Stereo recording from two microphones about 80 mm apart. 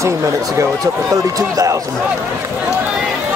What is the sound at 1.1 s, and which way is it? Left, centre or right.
Speech, right.